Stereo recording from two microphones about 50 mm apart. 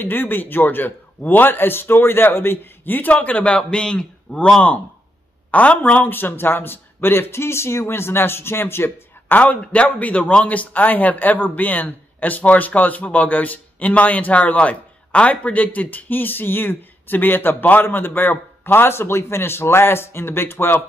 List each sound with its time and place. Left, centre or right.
0.0 s a man's voice: left
3.1 s a man's voice: left
9.3 s a man's voice: left